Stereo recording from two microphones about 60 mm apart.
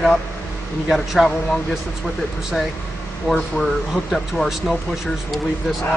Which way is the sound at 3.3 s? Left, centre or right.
Centre.